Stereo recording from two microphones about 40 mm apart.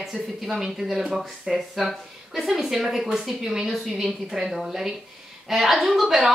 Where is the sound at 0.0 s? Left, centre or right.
Centre.